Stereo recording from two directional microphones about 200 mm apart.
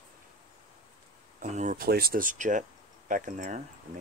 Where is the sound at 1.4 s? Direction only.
35° right (ahead or behind).